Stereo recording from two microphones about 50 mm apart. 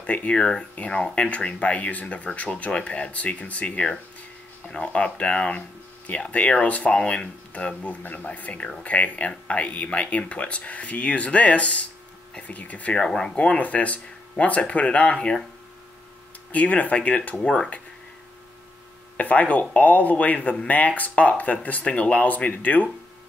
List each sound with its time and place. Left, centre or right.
0.0 s speech: left
0.4 s speech: centre
1.1 s speech: left
12.9 s speech: centre
13.4 s speech: left
16.5 s speech: left
19.1 s speech: left